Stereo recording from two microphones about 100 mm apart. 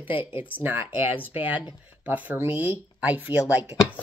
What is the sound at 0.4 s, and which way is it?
Speech, 20° right (ahead or behind).